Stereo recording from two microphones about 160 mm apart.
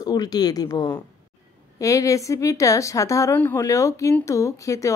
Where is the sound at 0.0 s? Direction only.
25° left (ahead or behind).